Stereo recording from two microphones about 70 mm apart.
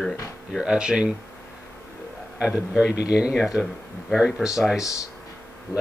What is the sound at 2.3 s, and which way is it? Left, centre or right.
Speech, centre.